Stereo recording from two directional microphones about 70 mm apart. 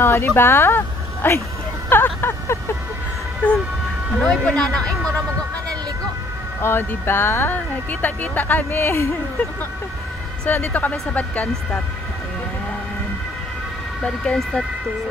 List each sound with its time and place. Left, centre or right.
0.0 s speech: left
4.2 s speech: centre
6.6 s speech: left
10.5 s speech: left
14.0 s speech: centre